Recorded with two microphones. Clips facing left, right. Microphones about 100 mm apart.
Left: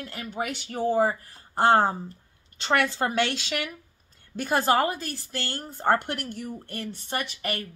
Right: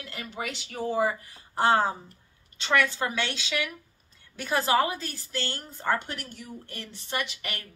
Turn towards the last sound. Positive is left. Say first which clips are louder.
# left 2 dB
turn(degrees=50)  # may be behind; listen again after turning